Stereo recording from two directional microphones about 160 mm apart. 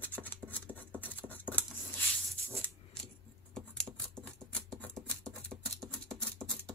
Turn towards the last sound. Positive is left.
turn(degrees=5)  # may be behind; listen again after turning